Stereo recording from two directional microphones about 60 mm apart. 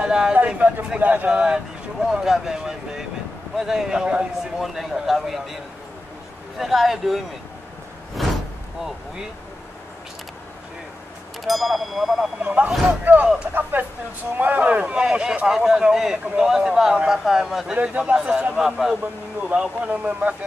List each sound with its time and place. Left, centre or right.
0.0 s speech: centre
1.4 s a man's voice: centre
6.6 s a man's voice: centre
8.2 s a sound: centre
11.4 s a man's voice: centre
12.4 s speech: right; by 17.7 s centre
17.7 s speech: right
18.6 s speech: centre
19.5 s speech: centre